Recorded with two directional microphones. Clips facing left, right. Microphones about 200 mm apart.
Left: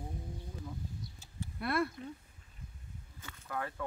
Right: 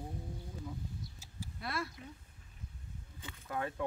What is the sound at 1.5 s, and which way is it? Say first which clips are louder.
Speech: left 7 dB; 60° left (ahead or behind).